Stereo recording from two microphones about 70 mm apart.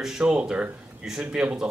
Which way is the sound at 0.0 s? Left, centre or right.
Centre.